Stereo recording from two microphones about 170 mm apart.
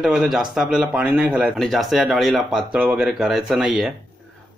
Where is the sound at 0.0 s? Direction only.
5° right (ahead or behind).